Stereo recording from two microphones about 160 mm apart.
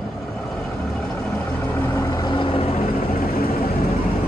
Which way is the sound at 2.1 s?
30° left (ahead or behind).